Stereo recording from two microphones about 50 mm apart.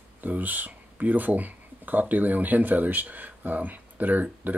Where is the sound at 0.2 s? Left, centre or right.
Right.